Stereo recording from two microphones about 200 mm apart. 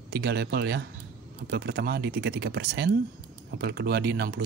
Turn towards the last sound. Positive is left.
turn(degrees=-55)  # may be behind; listen again after turning